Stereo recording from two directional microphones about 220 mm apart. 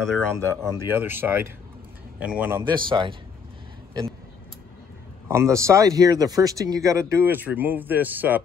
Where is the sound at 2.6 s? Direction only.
20° right (ahead or behind).